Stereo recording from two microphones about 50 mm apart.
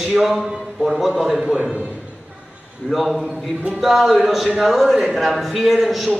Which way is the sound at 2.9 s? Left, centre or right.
Centre.